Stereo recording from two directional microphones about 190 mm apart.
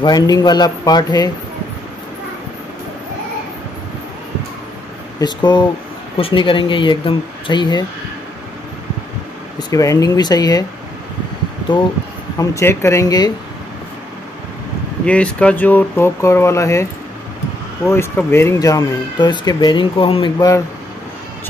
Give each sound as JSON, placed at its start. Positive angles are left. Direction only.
{"t": 0.0, "sound": "speech", "side_deg": 20}
{"t": 5.2, "sound": "speech", "side_deg": 25}
{"t": 9.6, "sound": "speech", "side_deg": 15}
{"t": 12.4, "sound": "speech", "side_deg": 15}
{"t": 15.0, "sound": "speech", "side_deg": 5}
{"t": 17.8, "sound": "speech", "side_deg": 15}